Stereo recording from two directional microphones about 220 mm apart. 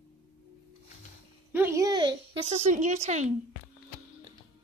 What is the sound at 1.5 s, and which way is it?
A woman's voice, 10° right (ahead or behind).